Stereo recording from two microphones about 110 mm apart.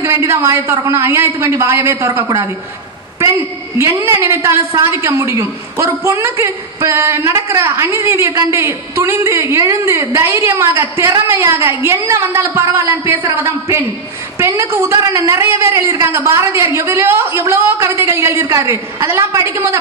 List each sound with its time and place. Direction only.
0.0 s a woman's voice: 25° right (ahead or behind)